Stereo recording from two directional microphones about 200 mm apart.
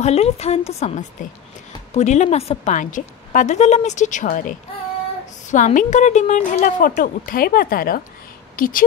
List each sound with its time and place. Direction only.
0.0 s a woman's voice: 30° left (ahead or behind)